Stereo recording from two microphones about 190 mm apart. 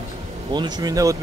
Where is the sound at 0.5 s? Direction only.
20° right (ahead or behind).